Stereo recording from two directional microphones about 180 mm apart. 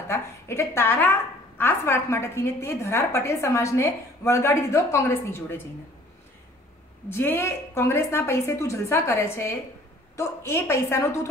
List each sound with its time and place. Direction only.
0.1 s a woman's voice: 15° left (ahead or behind)
7.1 s a woman's voice: 15° left (ahead or behind)